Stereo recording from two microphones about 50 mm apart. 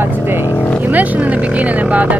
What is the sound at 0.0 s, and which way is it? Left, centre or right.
Vehicle, right.